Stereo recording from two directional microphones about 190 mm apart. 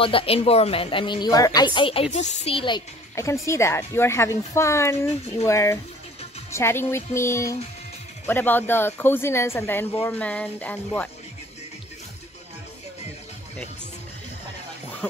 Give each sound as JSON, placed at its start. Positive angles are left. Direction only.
{"t": 0.0, "sound": "a woman's voice", "side_deg": 30}
{"t": 3.4, "sound": "speech", "side_deg": 15}